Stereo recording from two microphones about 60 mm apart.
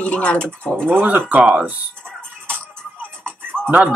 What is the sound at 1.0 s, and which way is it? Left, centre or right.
Speech, right.